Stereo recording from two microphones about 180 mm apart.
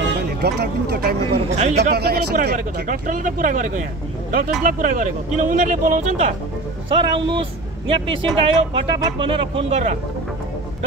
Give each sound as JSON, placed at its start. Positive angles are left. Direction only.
{"t": 0.4, "sound": "speech", "side_deg": -65}
{"t": 1.5, "sound": "speech", "side_deg": -40}
{"t": 1.8, "sound": "speech", "side_deg": -65}
{"t": 2.5, "sound": "speech", "side_deg": -45}
{"t": 6.9, "sound": "speech", "side_deg": -30}